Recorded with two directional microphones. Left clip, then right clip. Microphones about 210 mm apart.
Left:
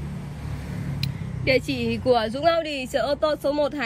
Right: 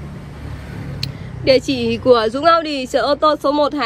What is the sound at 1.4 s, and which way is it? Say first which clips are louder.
Speech: right 8 dB; 15° right (ahead or behind).